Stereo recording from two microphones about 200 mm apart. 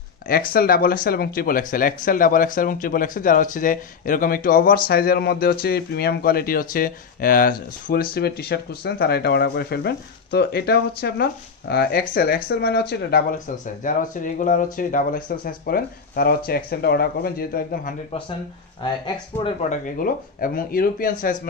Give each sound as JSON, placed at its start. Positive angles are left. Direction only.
{"t": 0.5, "sound": "speech", "side_deg": 50}
{"t": 13.8, "sound": "speech", "side_deg": 40}
{"t": 19.7, "sound": "speech", "side_deg": 45}